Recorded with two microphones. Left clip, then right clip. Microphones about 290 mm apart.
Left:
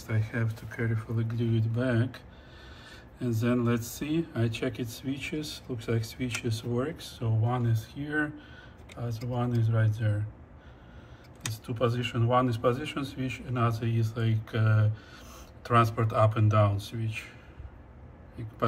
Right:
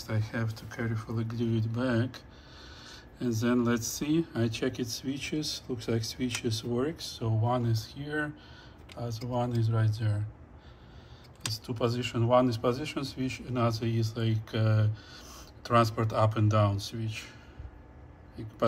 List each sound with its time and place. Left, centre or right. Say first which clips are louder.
0.0 s a man's voice: left 1 dB; centre
11.6 s a man's voice: left 3 dB; centre